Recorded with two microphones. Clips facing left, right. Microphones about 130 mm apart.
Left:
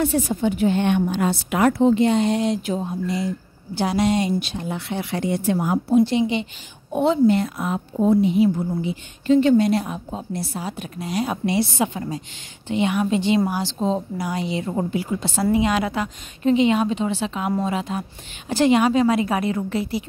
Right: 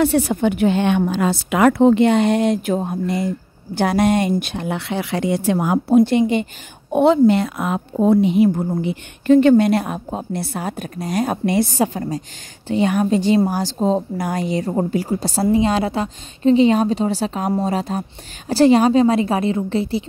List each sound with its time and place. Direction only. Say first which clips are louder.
0.0 s a woman's voice: right 4 dB; 70° right (ahead or behind); by 5.9 s 90° right
5.9 s a woman's voice: right 4 dB; 55° right (ahead or behind)
6.9 s a woman's voice: right 4 dB; 65° right (ahead or behind)
8.5 s a woman's voice: right 3 dB; 55° right (ahead or behind); by 20.1 s 30° right (ahead or behind)